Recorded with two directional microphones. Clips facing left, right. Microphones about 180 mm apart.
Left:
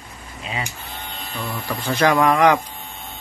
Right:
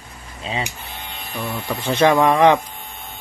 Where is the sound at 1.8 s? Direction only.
25° right (ahead or behind).